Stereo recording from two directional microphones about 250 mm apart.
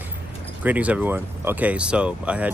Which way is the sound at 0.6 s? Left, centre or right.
Centre.